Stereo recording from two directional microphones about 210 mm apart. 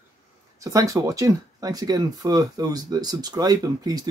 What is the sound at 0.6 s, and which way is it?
Speech, 15° right (ahead or behind).